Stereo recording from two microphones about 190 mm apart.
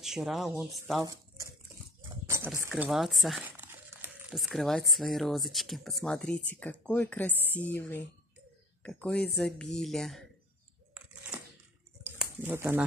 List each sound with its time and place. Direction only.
0.0 s speech: centre (ahead or behind)
1.0 s speech: 15° right (ahead or behind)
2.2 s a sound: 15° right (ahead or behind)
2.7 s crumpling: centre (ahead or behind)
4.4 s a woman's voice: centre (ahead or behind)
12.0 s a sound: 10° right (ahead or behind)